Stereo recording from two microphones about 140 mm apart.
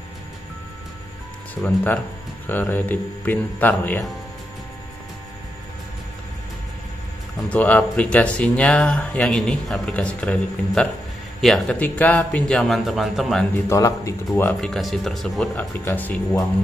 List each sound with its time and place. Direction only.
1.5 s speech: 10° left (ahead or behind)
7.4 s a man's voice: 10° left (ahead or behind)
13.7 s speech: 20° left (ahead or behind)
14.6 s speech: centre (ahead or behind)